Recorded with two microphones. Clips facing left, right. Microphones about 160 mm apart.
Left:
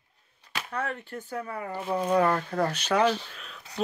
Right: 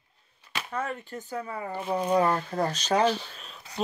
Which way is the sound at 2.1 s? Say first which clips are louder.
Left 1 dB; 25° right (ahead or behind).